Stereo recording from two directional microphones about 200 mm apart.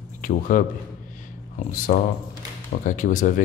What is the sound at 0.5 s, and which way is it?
Speech, 40° left (ahead or behind).